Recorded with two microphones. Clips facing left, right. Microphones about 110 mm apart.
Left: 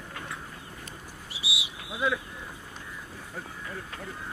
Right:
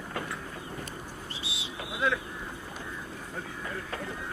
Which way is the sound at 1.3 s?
10° left (ahead or behind).